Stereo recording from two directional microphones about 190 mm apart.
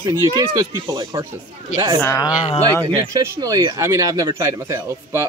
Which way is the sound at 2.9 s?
20° right (ahead or behind).